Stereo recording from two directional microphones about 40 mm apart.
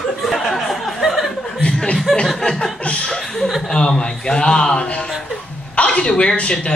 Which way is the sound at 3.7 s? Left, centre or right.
Left.